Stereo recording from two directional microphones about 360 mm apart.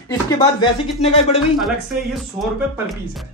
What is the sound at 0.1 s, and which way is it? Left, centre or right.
A man's voice, centre.